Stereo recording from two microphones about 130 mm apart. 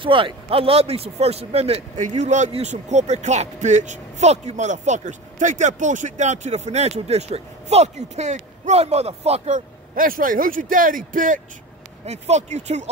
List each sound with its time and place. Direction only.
0.0 s speech: 40° right (ahead or behind)
9.9 s speech: 90° right
12.1 s speech: 60° right (ahead or behind)